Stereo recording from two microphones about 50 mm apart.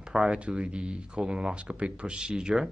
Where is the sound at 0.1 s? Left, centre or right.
Centre.